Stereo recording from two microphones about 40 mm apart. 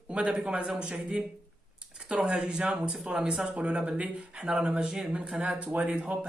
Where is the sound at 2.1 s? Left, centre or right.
Centre.